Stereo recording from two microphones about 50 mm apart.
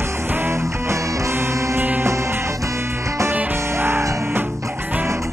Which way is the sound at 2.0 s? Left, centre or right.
Right.